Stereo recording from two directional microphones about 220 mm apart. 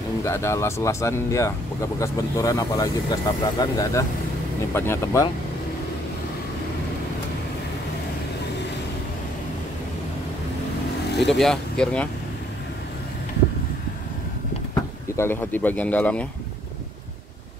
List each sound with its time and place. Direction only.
0.2 s speech: 10° left (ahead or behind)
11.2 s speech: centre (ahead or behind)
14.7 s speech: 10° left (ahead or behind)